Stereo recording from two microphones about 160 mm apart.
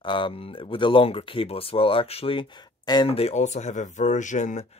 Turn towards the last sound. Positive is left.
turn(degrees=50)  # may be behind; listen again after turning